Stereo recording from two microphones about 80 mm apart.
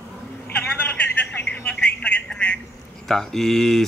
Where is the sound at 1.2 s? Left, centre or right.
Centre.